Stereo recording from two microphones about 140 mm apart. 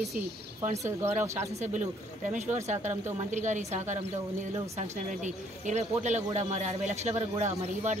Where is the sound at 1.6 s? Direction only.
60° right (ahead or behind).